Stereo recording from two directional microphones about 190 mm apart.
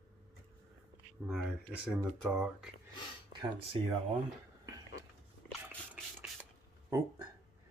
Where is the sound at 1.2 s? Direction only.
Centre (ahead or behind).